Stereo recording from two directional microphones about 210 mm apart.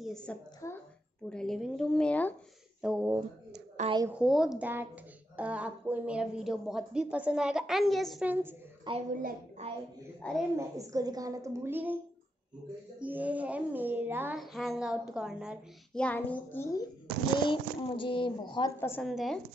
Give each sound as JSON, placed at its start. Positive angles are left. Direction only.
{"t": 0.0, "sound": "speech", "side_deg": 5}
{"t": 2.8, "sound": "speech", "side_deg": -5}
{"t": 3.8, "sound": "a woman's voice", "side_deg": -35}
{"t": 4.1, "sound": "speech", "side_deg": -5}
{"t": 9.1, "sound": "a woman's voice", "side_deg": -40}
{"t": 10.2, "sound": "a woman's voice", "side_deg": 5}
{"t": 10.8, "sound": "a woman's voice", "side_deg": -15}
{"t": 13.0, "sound": "speech", "side_deg": -5}
{"t": 17.4, "sound": "speech", "side_deg": 25}
{"t": 18.8, "sound": "speech", "side_deg": 10}